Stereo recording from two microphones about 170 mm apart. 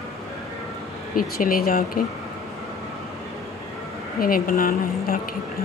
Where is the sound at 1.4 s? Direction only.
60° left (ahead or behind).